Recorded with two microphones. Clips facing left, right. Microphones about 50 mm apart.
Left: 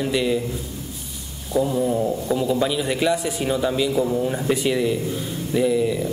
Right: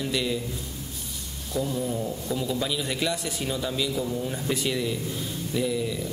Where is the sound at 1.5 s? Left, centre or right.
Centre.